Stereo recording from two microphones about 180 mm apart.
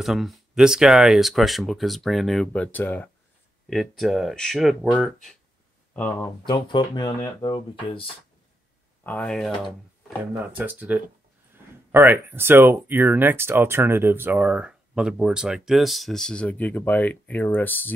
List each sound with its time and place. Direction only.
0.0 s speech: centre (ahead or behind)
6.4 s speech: 25° left (ahead or behind)
9.0 s speech: 5° left (ahead or behind)